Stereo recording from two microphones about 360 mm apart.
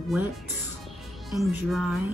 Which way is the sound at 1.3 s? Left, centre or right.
Centre.